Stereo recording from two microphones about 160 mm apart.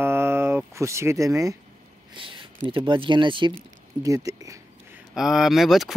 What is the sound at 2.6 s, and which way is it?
Speech, 30° right (ahead or behind).